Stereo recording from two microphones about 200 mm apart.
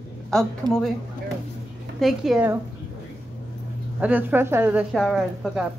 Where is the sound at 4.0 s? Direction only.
10° right (ahead or behind).